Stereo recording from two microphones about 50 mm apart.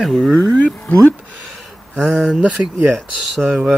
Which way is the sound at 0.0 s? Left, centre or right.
Centre.